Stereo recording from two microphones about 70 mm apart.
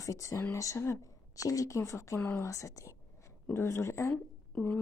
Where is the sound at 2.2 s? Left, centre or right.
Left.